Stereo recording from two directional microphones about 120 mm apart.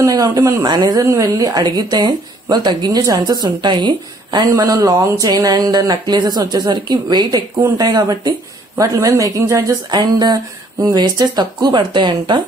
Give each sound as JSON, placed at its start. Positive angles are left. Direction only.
{"t": 0.0, "sound": "speech", "side_deg": -30}